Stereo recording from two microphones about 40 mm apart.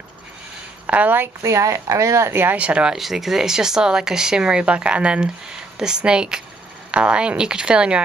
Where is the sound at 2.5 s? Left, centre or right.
Right.